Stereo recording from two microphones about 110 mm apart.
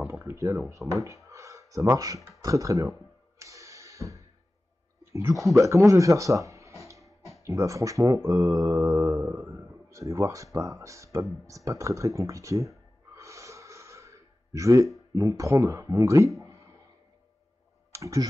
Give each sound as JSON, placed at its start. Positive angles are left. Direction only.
{"t": 0.0, "sound": "speech", "side_deg": -20}
{"t": 2.4, "sound": "a sound", "side_deg": -30}
{"t": 5.1, "sound": "speech", "side_deg": -25}
{"t": 11.4, "sound": "a sound", "side_deg": -30}
{"t": 15.1, "sound": "speech", "side_deg": -30}
{"t": 17.9, "sound": "speech", "side_deg": -30}